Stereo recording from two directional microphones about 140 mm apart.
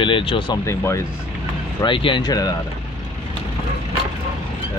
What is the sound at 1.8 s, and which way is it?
Speech, 35° left (ahead or behind).